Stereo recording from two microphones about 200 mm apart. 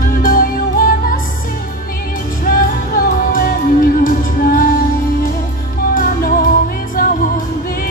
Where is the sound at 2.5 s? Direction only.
45° left (ahead or behind).